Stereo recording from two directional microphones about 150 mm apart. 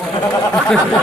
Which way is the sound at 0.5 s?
Centre (ahead or behind).